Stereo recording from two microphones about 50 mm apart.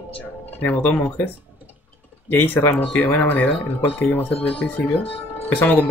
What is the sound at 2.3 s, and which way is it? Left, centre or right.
Speech, left.